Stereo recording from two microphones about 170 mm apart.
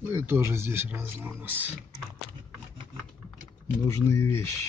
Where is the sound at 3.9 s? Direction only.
20° left (ahead or behind).